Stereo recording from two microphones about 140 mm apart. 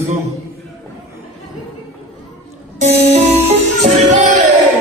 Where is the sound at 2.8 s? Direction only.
50° right (ahead or behind).